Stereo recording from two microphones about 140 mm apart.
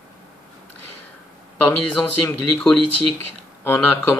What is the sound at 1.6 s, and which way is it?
Speech, 10° left (ahead or behind).